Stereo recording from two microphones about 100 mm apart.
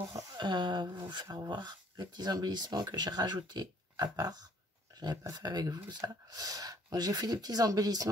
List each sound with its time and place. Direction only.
0.1 s speech: 45° right (ahead or behind)
4.9 s a sound: 45° right (ahead or behind)
5.3 s speech: 40° right (ahead or behind)